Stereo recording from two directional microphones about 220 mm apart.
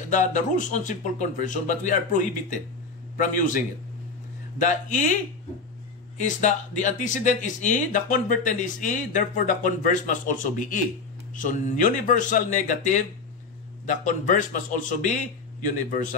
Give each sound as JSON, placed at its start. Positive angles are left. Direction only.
{"t": 0.1, "sound": "speech", "side_deg": 35}